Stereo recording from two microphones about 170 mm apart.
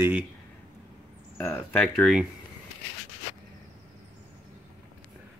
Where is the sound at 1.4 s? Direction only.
10° left (ahead or behind).